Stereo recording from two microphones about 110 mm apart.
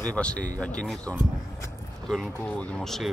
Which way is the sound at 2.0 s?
Centre (ahead or behind).